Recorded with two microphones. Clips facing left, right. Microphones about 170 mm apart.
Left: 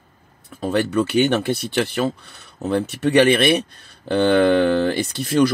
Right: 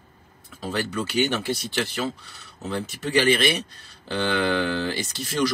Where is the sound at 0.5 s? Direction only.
60° left (ahead or behind).